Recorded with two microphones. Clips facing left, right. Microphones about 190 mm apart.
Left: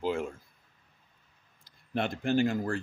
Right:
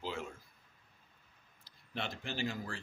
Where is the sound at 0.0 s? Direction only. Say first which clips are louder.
Left 10 dB; 50° left (ahead or behind).